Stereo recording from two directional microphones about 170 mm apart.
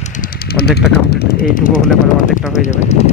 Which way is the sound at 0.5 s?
70° left (ahead or behind).